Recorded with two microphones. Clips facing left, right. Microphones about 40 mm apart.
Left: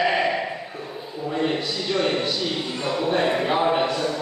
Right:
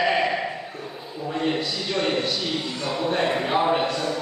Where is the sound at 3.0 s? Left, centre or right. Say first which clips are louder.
Left 1 dB; centre.